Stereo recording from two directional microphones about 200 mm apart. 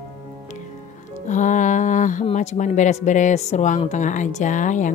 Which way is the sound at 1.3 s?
40° left (ahead or behind).